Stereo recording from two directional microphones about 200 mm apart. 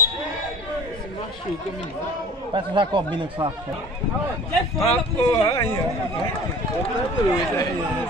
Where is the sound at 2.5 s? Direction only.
25° right (ahead or behind).